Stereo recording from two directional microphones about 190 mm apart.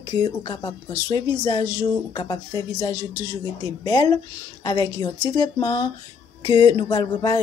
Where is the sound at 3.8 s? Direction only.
20° left (ahead or behind).